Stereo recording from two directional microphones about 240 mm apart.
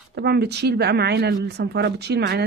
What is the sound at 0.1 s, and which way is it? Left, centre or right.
Speech, right.